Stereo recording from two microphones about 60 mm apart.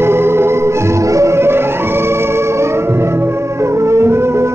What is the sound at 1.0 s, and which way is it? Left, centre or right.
Music, right.